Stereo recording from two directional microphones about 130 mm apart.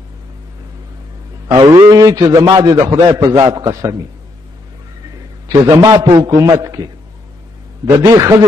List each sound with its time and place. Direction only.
1.6 s a man's voice: 30° right (ahead or behind)
5.6 s a man's voice: 25° right (ahead or behind)